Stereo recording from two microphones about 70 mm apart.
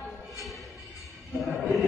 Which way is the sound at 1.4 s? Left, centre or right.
Centre.